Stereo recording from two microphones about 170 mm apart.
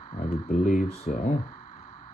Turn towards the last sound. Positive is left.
turn(degrees=45)  # may be behind; listen again after turning